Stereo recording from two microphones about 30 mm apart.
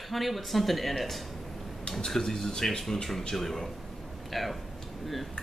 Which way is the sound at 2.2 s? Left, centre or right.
Centre.